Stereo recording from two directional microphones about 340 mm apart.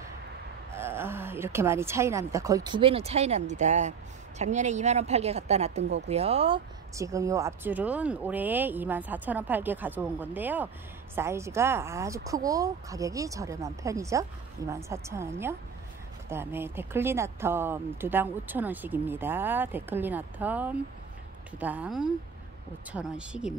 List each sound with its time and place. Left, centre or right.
0.7 s a woman's voice: centre